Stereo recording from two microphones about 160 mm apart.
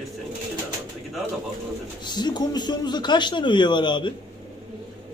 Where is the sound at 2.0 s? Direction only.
25° left (ahead or behind).